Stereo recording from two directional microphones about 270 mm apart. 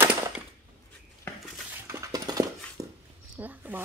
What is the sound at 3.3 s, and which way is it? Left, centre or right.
Zipper, centre.